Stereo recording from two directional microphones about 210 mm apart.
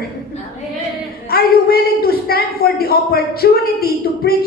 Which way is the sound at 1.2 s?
45° left (ahead or behind).